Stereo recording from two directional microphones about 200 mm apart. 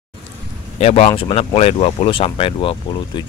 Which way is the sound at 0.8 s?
30° left (ahead or behind).